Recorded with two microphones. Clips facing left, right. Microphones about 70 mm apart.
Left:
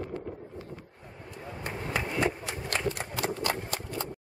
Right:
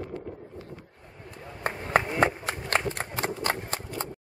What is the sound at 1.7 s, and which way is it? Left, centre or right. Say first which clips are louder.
Chop: right 7 dB; right.